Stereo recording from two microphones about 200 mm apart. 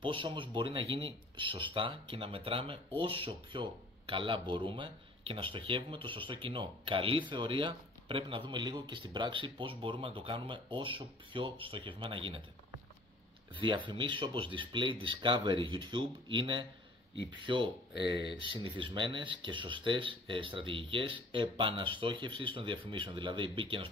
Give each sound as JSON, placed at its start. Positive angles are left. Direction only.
{"t": 0.0, "sound": "speech", "side_deg": -25}
{"t": 13.6, "sound": "speech", "side_deg": -25}
{"t": 17.1, "sound": "speech", "side_deg": 60}
{"t": 17.4, "sound": "speech", "side_deg": -25}
{"t": 18.0, "sound": "speech", "side_deg": 60}
{"t": 18.4, "sound": "speech", "side_deg": -25}